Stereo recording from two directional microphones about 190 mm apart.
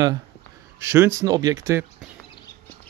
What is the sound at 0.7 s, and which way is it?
Speech, 15° right (ahead or behind).